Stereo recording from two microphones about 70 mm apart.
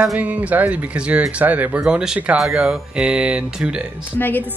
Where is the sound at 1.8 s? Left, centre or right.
Centre.